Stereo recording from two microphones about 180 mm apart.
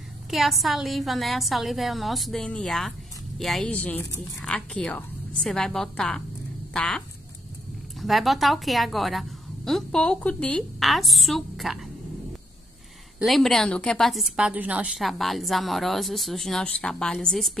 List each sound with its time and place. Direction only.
0.3 s a woman's voice: centre (ahead or behind)
8.0 s a woman's voice: centre (ahead or behind)
13.2 s a woman's voice: centre (ahead or behind)